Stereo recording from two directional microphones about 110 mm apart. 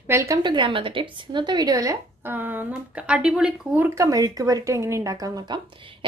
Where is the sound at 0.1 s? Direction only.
25° right (ahead or behind).